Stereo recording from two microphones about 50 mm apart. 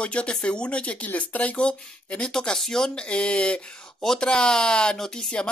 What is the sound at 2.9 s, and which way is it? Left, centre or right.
Speech, left.